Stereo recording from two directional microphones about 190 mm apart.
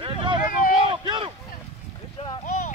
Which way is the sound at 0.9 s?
25° right (ahead or behind).